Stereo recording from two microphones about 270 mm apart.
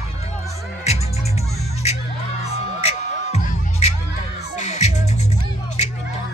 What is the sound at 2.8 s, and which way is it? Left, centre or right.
Music, left.